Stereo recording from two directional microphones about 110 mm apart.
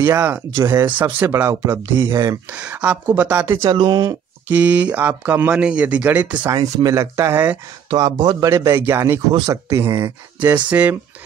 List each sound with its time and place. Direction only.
0.0 s speech: 20° right (ahead or behind)
0.5 s speech: 35° right (ahead or behind)
0.7 s speech: 20° right (ahead or behind)
2.5 s speech: 10° right (ahead or behind)
3.7 s speech: 45° right (ahead or behind)
4.5 s speech: 15° right (ahead or behind)
6.4 s speech: 35° right (ahead or behind)
7.9 s speech: 40° right (ahead or behind)
8.5 s speech: 25° right (ahead or behind)
10.4 s speech: 15° right (ahead or behind)